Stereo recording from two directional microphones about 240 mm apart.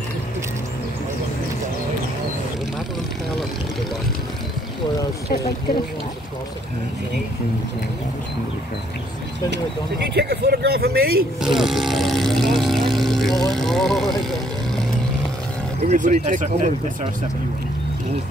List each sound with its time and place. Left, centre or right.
10.0 s speech: right
11.4 s speech: centre
15.8 s speech: right